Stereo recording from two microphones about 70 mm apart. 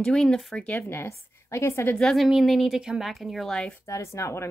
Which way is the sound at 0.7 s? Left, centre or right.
Left.